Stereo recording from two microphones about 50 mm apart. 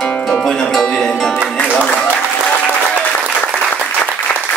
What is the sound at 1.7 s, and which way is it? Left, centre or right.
Applause, left.